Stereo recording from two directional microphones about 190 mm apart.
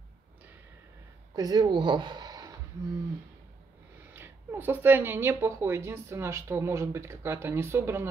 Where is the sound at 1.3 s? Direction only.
20° right (ahead or behind).